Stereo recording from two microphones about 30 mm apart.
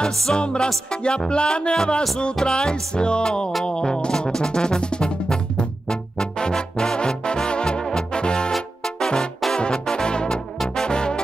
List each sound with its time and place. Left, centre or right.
0.3 s music: left